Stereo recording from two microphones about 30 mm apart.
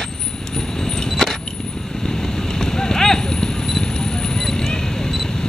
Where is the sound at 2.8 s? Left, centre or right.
Centre.